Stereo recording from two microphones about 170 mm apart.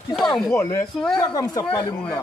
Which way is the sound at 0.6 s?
20° left (ahead or behind).